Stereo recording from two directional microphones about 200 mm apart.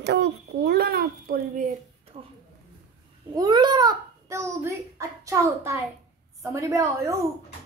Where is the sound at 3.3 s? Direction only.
20° right (ahead or behind).